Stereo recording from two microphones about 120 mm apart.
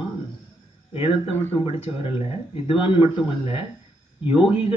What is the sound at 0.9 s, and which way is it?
Speech, 50° left (ahead or behind).